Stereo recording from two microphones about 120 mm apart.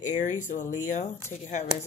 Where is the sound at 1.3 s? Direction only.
75° left (ahead or behind).